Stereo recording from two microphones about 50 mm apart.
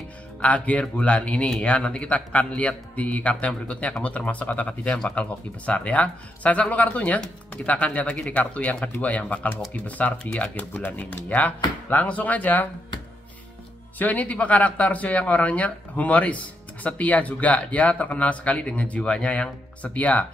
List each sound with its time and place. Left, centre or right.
0.4 s speech: left
4.8 s speech: centre
5.1 s speech: left
10.5 s speech: left
13.9 s speech: left